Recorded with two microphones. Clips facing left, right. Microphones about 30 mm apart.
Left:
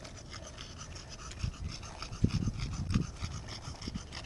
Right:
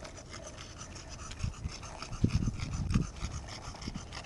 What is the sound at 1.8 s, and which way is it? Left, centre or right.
Dog, centre.